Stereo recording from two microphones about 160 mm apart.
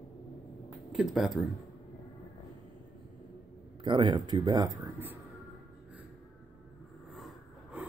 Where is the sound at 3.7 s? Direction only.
30° right (ahead or behind).